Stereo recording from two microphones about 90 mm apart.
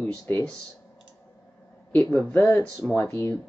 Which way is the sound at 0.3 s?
20° left (ahead or behind).